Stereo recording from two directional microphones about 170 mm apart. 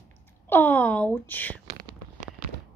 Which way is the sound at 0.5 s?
10° left (ahead or behind).